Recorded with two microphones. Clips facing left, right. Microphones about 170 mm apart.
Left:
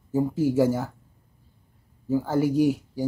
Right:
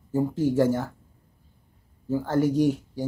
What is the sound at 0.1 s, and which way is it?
Speech, 10° left (ahead or behind).